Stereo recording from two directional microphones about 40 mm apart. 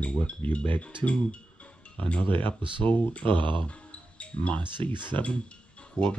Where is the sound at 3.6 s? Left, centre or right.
Left.